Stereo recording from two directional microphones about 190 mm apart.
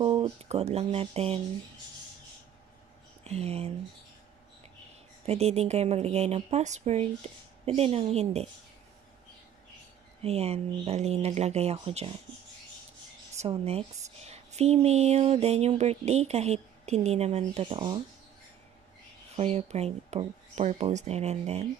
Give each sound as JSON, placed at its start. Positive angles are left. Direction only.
{"t": 0.0, "sound": "a woman's voice", "side_deg": -30}
{"t": 3.3, "sound": "a woman's voice", "side_deg": -30}
{"t": 5.2, "sound": "a woman's voice", "side_deg": -35}
{"t": 10.2, "sound": "a woman's voice", "side_deg": -35}
{"t": 13.4, "sound": "a woman's voice", "side_deg": -30}
{"t": 19.3, "sound": "a woman's voice", "side_deg": -35}